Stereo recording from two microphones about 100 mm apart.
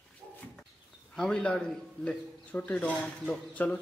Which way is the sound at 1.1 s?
5° left (ahead or behind).